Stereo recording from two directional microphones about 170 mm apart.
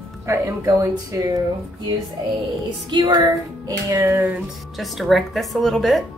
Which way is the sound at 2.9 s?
25° right (ahead or behind).